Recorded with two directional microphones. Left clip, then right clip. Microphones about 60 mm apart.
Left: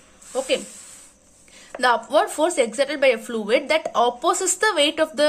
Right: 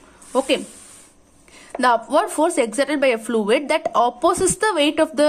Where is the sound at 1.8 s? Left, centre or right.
Right.